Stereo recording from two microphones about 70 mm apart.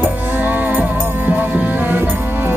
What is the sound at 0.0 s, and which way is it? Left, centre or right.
Music, right.